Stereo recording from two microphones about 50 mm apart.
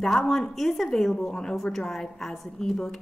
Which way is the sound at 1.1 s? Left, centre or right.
Centre.